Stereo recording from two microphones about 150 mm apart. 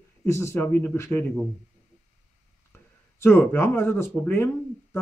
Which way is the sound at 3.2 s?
15° left (ahead or behind).